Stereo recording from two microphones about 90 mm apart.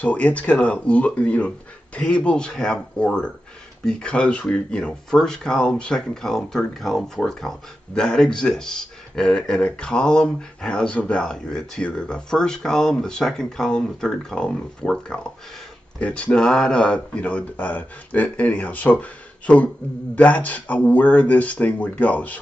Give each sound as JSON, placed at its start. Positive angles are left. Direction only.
{"t": 0.0, "sound": "speech", "side_deg": 15}